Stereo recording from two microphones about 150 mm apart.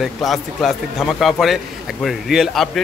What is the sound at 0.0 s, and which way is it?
A man's voice, centre (ahead or behind).